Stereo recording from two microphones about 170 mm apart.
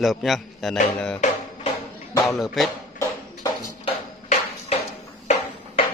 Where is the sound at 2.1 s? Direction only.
20° left (ahead or behind).